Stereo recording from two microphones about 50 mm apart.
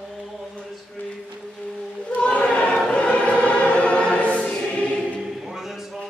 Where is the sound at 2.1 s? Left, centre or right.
Left.